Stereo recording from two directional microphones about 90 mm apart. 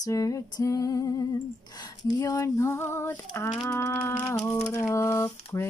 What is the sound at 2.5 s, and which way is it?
Female singing, 30° left (ahead or behind).